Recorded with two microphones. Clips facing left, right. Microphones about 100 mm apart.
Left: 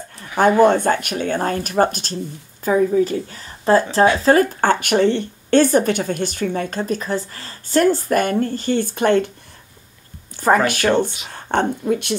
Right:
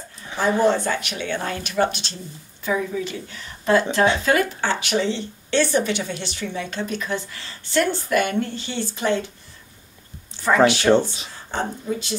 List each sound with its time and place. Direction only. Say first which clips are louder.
0.4 s a woman's voice: left 6 dB; 55° left (ahead or behind)
10.4 s a woman's voice: left 1 dB; 45° left (ahead or behind)
11.2 s speech: left 7 dB; 60° left (ahead or behind)